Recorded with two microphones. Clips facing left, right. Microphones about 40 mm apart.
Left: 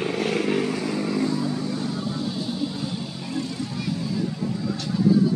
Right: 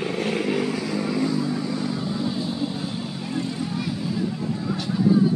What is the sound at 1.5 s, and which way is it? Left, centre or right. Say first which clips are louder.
Vehicle: right 1 dB; centre.